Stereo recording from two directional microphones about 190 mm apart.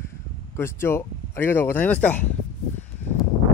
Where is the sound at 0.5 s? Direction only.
15° left (ahead or behind).